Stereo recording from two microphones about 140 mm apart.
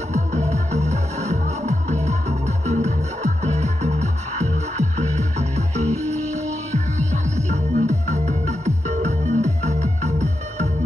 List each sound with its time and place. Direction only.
0.1 s music: 55° right (ahead or behind)